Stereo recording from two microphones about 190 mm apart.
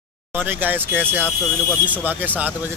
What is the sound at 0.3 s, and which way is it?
Speech, 10° right (ahead or behind).